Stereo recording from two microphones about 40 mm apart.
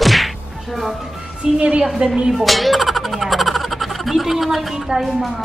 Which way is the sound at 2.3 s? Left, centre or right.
Centre.